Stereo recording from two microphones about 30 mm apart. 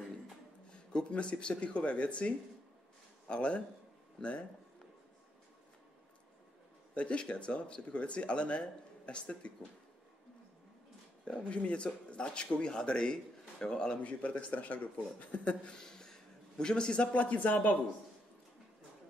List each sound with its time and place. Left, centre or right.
1.1 s speech: left
6.9 s speech: left
11.2 s speech: left
14.0 s speech: left
15.6 s a sound: left
16.9 s speech: left